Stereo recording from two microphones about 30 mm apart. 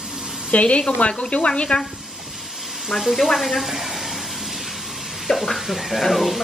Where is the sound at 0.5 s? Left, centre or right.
Left.